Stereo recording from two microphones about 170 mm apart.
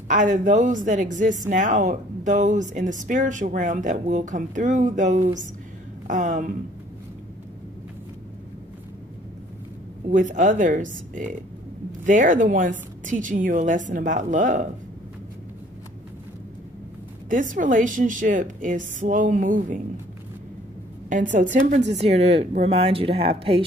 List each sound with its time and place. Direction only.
0.1 s speech: 50° right (ahead or behind)
10.1 s speech: 50° right (ahead or behind)
17.3 s speech: 50° right (ahead or behind)
21.1 s speech: 50° right (ahead or behind)